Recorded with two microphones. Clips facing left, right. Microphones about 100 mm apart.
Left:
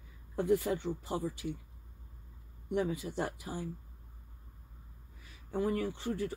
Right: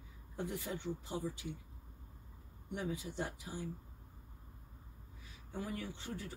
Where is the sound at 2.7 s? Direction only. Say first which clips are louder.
Left 8 dB; 65° left (ahead or behind).